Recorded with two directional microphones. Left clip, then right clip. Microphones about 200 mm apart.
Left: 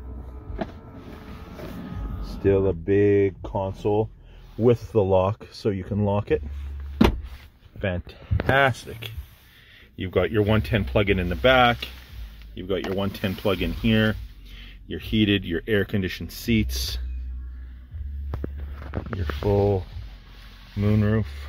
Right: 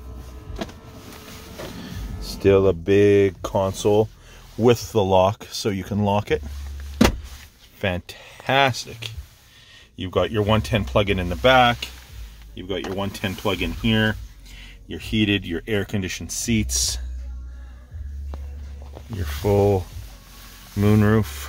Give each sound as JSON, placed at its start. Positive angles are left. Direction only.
{"t": 2.2, "sound": "speech", "side_deg": -15}
{"t": 4.6, "sound": "speech", "side_deg": -15}
{"t": 5.1, "sound": "speech", "side_deg": 0}
{"t": 7.8, "sound": "speech", "side_deg": -15}
{"t": 19.1, "sound": "speech", "side_deg": -25}
{"t": 20.8, "sound": "speech", "side_deg": -35}